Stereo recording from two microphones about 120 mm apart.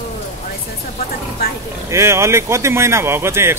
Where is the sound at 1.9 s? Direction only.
25° right (ahead or behind).